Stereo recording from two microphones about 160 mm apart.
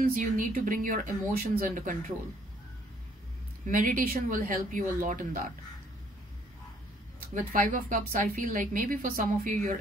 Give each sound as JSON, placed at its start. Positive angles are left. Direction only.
{"t": 0.0, "sound": "a woman's voice", "side_deg": -60}
{"t": 1.6, "sound": "speech", "side_deg": -55}
{"t": 3.6, "sound": "a woman's voice", "side_deg": -55}
{"t": 7.3, "sound": "a woman's voice", "side_deg": -55}